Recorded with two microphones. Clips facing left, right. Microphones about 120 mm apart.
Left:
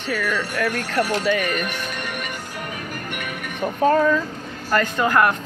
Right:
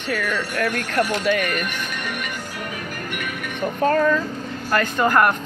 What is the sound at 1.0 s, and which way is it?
Speech, 35° left (ahead or behind).